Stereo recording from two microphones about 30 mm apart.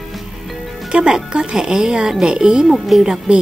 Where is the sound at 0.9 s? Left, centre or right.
Right.